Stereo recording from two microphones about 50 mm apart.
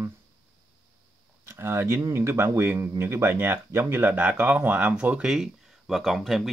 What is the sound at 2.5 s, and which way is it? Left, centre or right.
Mantra, right.